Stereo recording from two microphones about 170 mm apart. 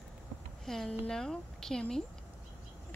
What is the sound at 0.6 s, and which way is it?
Speech, 5° left (ahead or behind).